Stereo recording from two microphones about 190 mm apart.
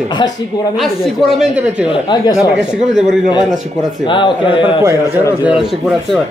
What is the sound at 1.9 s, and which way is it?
Speech, 25° left (ahead or behind).